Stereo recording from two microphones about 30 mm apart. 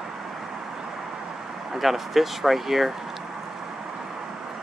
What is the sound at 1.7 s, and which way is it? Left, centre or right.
Speech, centre.